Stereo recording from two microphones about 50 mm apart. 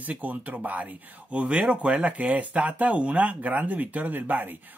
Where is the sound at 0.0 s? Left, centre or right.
Right.